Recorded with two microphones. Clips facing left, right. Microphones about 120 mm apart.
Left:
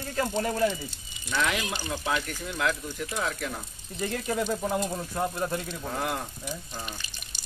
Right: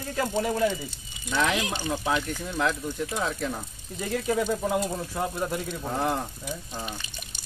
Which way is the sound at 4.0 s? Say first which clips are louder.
Right 3 dB; 5° right (ahead or behind).